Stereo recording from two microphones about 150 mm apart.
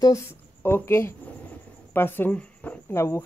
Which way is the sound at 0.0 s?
20° left (ahead or behind).